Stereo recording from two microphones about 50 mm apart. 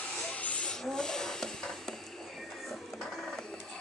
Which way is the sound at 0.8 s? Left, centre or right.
Centre.